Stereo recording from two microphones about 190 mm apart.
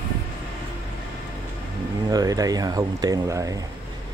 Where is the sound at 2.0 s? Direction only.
20° right (ahead or behind).